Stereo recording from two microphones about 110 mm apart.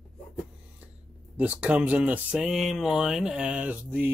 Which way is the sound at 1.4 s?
15° right (ahead or behind).